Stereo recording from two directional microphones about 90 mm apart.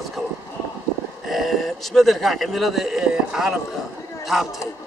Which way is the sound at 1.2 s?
Centre (ahead or behind).